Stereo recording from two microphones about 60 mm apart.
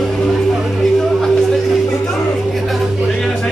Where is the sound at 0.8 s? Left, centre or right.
Centre.